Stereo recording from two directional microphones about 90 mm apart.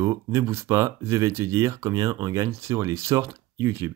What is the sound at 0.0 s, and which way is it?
Speech, 35° right (ahead or behind).